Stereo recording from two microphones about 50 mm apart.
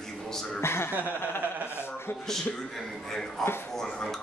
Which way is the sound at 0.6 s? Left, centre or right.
Left.